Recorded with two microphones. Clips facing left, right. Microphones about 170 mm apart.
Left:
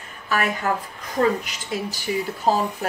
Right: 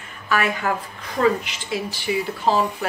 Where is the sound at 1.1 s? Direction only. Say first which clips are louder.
Right 1 dB; 40° left (ahead or behind).